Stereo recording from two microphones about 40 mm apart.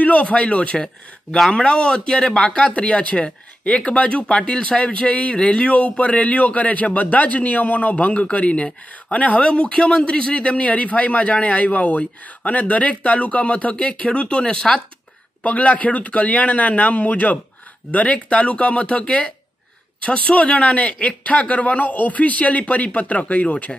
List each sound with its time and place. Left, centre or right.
0.0 s speech: left
4.3 s speech: left
15.4 s speech: left